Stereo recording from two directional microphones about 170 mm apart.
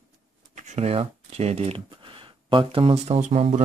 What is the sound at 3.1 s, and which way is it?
Speech, 45° right (ahead or behind).